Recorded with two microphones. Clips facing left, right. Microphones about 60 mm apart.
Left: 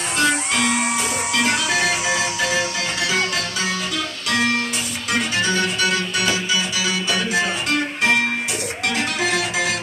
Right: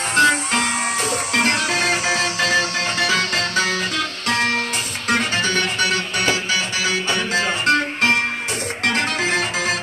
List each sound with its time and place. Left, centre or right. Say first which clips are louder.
0.1 s music: right 4 dB; right
6.1 s music: right 1 dB; right